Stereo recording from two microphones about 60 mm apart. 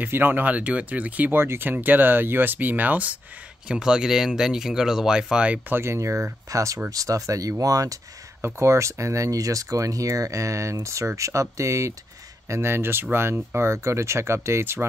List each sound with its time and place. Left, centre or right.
0.0 s speech: right
1.4 s speech: right
3.6 s speech: centre
5.7 s speech: right
5.9 s speech: right
6.9 s speech: right
8.5 s speech: right
12.4 s speech: right